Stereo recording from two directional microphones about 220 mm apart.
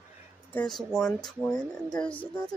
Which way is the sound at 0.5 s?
5° left (ahead or behind).